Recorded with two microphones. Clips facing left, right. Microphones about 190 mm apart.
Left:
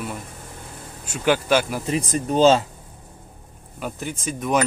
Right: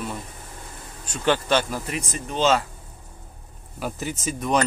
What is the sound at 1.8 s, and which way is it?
Speech, 35° left (ahead or behind).